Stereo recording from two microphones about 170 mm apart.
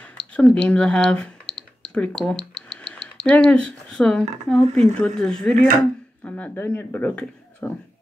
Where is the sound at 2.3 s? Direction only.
35° left (ahead or behind).